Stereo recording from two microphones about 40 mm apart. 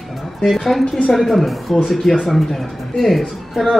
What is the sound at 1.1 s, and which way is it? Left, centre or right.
A man's voice, centre.